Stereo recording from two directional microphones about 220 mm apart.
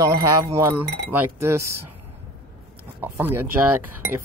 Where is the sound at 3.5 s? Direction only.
10° right (ahead or behind).